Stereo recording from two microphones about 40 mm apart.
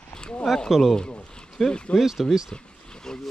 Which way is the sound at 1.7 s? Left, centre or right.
Left.